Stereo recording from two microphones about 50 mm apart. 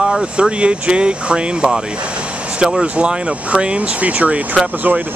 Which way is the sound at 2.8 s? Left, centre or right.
Right.